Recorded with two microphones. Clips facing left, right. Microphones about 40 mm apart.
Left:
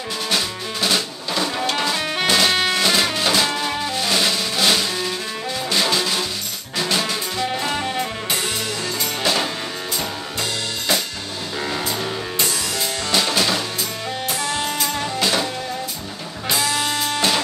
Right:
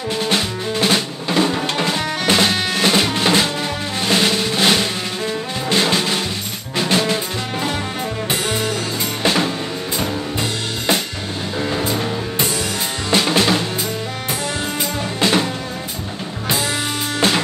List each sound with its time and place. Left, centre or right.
0.3 s music: right
2.5 s music: left
2.8 s music: right
4.1 s drum: right
5.7 s music: right
9.2 s music: right
11.7 s music: right
13.1 s drum kit: right
15.1 s music: right
16.4 s music: right